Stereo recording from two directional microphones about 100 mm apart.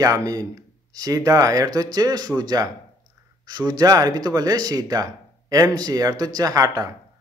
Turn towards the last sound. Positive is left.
turn(degrees=-40)  # may be behind; listen again after turning